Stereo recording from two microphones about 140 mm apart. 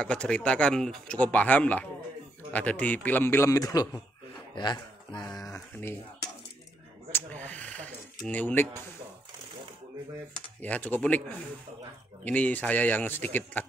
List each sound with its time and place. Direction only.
0.0 s speech: 5° left (ahead or behind)
7.1 s a sound: 15° left (ahead or behind)
10.6 s speech: 10° left (ahead or behind)
12.3 s speech: 10° left (ahead or behind)